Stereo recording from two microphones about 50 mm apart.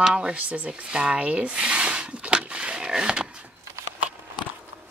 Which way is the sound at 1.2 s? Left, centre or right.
Right.